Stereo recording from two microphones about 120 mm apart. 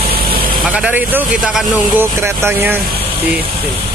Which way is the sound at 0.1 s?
45° right (ahead or behind).